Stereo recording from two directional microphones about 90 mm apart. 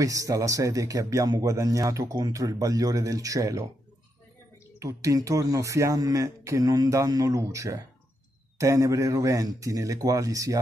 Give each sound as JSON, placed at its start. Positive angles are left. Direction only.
{"t": 0.0, "sound": "speech", "side_deg": -40}
{"t": 4.7, "sound": "speech", "side_deg": -40}